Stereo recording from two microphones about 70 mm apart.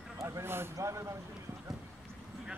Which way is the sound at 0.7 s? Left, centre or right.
Right.